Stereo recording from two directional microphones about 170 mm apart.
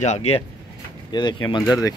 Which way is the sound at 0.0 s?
40° left (ahead or behind).